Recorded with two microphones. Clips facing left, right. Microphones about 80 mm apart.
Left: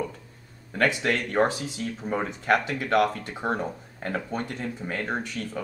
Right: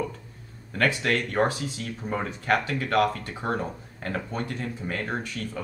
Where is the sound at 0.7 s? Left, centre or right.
Centre.